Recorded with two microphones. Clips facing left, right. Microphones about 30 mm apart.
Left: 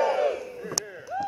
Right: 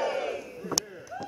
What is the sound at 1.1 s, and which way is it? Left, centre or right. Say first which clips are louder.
Chop: left 8 dB; left.